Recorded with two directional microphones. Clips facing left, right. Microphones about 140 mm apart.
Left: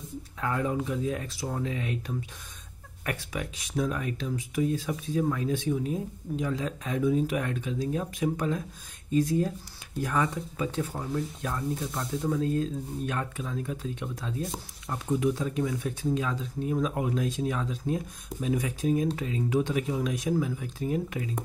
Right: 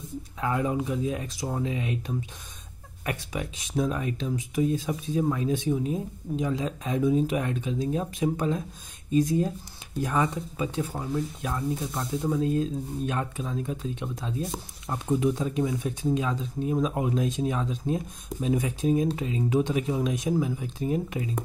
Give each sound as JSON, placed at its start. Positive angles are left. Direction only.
{"t": 0.4, "sound": "speech", "side_deg": -15}